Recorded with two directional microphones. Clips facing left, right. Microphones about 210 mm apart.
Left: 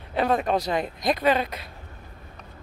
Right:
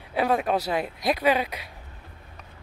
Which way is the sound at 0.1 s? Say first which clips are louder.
Left 1 dB; 10° right (ahead or behind).